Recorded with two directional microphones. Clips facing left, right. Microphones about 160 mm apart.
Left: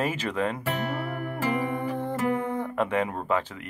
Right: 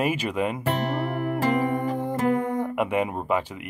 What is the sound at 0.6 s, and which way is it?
Music, 40° right (ahead or behind).